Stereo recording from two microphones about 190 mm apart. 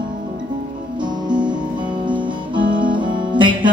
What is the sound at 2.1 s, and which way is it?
Music, 25° right (ahead or behind).